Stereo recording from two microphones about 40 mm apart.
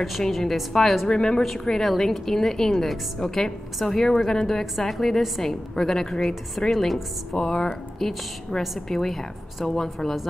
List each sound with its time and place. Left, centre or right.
0.3 s a woman's voice: centre
1.0 s speech: centre
1.4 s a woman's voice: centre
4.7 s a woman's voice: centre
7.3 s a woman's voice: centre